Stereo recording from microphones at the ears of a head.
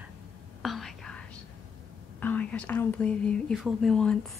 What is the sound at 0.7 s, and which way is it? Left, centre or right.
Whispering, left.